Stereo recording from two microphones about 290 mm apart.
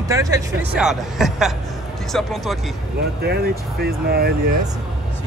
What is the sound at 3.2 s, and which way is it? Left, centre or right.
Speech, right.